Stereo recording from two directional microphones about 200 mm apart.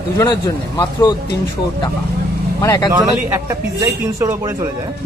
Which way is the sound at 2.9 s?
15° right (ahead or behind).